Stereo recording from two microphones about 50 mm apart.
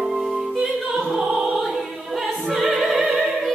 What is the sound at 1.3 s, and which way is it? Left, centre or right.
Opera, centre.